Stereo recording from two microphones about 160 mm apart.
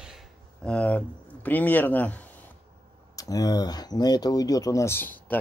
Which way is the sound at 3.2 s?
20° left (ahead or behind).